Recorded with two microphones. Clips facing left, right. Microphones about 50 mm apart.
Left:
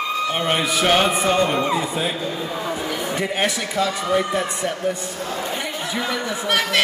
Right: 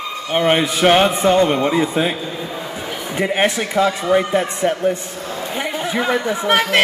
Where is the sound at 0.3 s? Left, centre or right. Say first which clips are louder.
Right 9 dB; right.